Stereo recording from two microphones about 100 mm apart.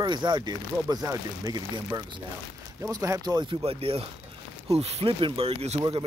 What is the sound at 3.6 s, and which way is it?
Speech, 75° right (ahead or behind).